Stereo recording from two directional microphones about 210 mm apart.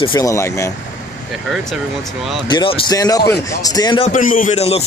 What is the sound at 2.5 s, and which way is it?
Speech, 20° left (ahead or behind).